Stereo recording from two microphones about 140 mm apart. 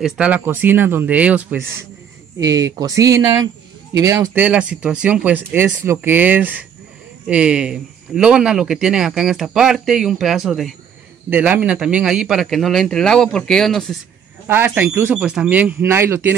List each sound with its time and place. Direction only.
0.0 s speech: 10° right (ahead or behind)
2.3 s speech: 25° right (ahead or behind)
4.3 s speech: 10° right (ahead or behind)
11.2 s speech: 10° right (ahead or behind)
14.5 s speech: 15° right (ahead or behind)